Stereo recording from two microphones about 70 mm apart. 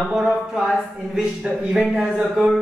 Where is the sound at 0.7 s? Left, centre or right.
Centre.